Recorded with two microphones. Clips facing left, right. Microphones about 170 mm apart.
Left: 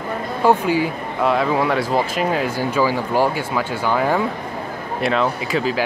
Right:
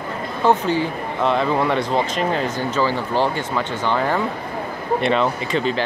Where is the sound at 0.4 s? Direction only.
10° left (ahead or behind).